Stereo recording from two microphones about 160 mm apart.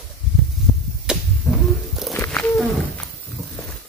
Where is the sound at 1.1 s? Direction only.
5° right (ahead or behind).